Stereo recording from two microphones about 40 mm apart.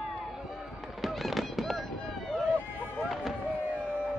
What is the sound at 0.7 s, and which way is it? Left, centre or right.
Fireworks, centre.